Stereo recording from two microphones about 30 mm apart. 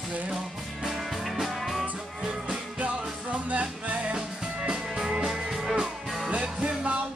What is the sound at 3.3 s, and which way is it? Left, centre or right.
Music, right.